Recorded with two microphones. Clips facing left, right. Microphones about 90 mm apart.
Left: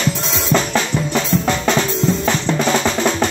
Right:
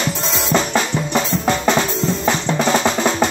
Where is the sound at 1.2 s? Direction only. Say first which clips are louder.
Even; 10° right (ahead or behind).